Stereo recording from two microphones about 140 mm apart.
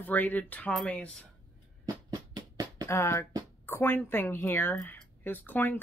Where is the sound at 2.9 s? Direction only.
20° left (ahead or behind).